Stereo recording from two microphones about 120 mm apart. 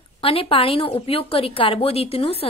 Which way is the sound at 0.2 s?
50° left (ahead or behind).